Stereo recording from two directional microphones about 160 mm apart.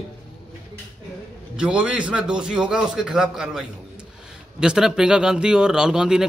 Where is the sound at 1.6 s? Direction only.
5° right (ahead or behind).